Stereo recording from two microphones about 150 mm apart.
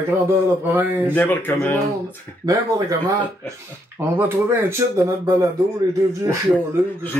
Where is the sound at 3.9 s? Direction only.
15° right (ahead or behind).